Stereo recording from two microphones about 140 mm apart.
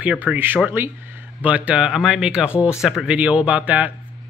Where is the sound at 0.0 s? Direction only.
10° right (ahead or behind).